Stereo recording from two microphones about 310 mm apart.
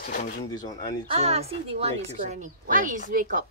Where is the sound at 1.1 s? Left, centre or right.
Centre.